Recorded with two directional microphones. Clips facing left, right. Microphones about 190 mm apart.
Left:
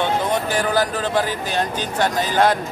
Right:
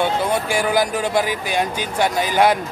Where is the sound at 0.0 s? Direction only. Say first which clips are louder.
Right 1 dB; 10° right (ahead or behind).